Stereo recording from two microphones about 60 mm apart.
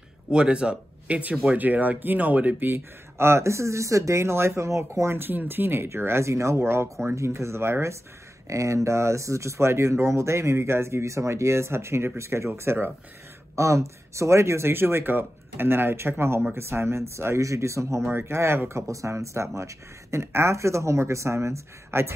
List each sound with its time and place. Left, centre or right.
0.3 s speech: centre; by 5.1 s right
5.1 s speech: right
8.5 s speech: right
13.6 s speech: right